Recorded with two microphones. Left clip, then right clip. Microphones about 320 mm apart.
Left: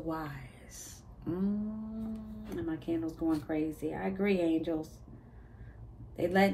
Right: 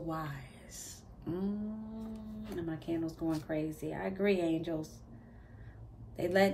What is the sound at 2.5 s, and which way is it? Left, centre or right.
A woman's voice, centre.